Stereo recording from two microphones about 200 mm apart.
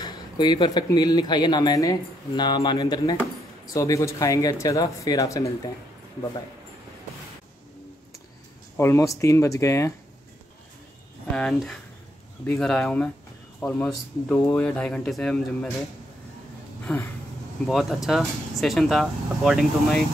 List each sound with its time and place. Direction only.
0.0 s speech: 20° left (ahead or behind)
8.7 s speech: 15° left (ahead or behind)
11.3 s speech: 5° left (ahead or behind)
16.8 s speech: 10° left (ahead or behind)
17.6 s speech: centre (ahead or behind)